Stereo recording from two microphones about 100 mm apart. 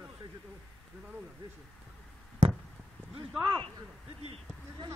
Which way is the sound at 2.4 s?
90° right.